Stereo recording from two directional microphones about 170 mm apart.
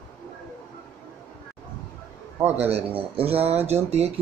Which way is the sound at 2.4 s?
15° right (ahead or behind).